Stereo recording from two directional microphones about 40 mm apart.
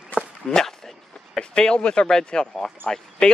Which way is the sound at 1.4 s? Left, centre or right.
Left.